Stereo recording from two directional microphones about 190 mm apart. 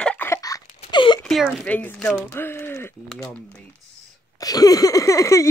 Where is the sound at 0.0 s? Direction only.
10° left (ahead or behind); by 1.2 s 25° left (ahead or behind).